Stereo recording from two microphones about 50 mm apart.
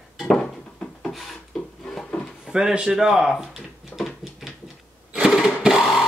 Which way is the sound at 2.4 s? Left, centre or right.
Centre.